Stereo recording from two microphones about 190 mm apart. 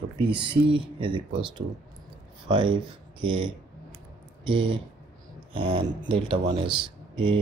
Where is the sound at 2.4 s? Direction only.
25° right (ahead or behind).